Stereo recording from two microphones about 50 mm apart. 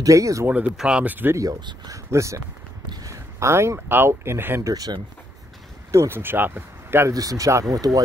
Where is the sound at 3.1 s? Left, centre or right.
Right.